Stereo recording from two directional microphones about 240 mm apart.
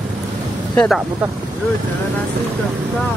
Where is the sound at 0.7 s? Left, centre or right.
Centre.